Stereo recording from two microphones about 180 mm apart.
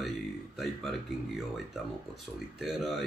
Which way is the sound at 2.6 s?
Centre (ahead or behind).